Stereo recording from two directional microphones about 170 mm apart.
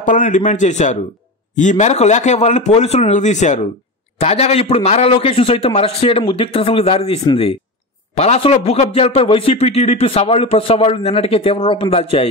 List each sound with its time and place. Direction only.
0.0 s a man's voice: 50° left (ahead or behind)